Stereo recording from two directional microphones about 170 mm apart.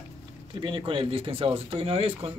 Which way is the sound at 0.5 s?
30° right (ahead or behind).